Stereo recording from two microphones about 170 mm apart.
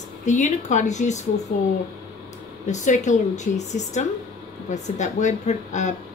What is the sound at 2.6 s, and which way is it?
A woman's voice, 45° left (ahead or behind).